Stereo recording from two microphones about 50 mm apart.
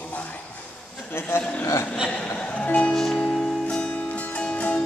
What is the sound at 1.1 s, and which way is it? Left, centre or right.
Speech, left.